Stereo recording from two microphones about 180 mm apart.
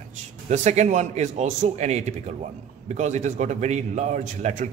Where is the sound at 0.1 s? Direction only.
40° right (ahead or behind).